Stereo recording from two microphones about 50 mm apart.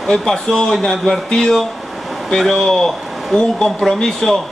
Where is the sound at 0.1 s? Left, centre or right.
Centre.